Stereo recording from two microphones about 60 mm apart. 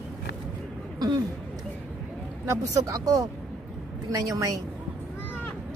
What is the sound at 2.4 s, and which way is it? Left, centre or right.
Speech, right.